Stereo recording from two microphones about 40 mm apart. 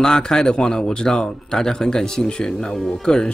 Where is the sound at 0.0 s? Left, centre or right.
Centre.